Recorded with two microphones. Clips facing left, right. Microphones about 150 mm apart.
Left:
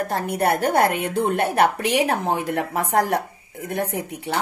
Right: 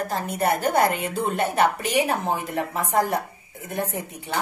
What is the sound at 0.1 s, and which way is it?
A woman's voice, 65° left (ahead or behind).